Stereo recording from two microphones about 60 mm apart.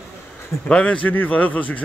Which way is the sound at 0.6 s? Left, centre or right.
Left.